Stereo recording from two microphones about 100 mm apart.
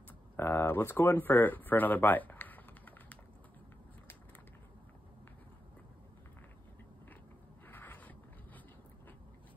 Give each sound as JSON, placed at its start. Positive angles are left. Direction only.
{"t": 0.4, "sound": "speech", "side_deg": 20}
{"t": 7.6, "sound": "zipper", "side_deg": 20}